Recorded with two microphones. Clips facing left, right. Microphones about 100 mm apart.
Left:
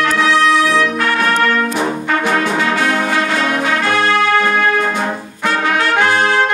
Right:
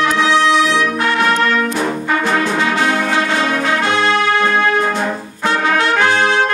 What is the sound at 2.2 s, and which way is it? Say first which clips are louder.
Music: left 1 dB; 15° left (ahead or behind).